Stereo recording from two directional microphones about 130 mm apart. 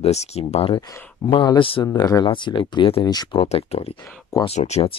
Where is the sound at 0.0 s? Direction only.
55° left (ahead or behind).